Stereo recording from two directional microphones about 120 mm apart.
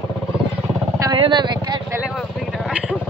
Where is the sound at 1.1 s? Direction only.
40° right (ahead or behind).